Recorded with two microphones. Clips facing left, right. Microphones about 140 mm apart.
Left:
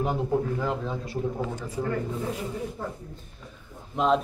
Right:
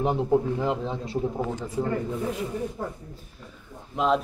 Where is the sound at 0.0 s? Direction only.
25° right (ahead or behind).